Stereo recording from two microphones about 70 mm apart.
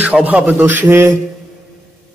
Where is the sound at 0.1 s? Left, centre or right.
Centre.